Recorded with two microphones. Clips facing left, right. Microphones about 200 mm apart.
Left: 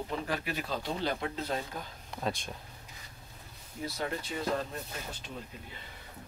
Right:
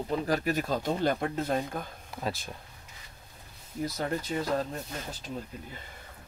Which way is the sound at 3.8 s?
40° right (ahead or behind).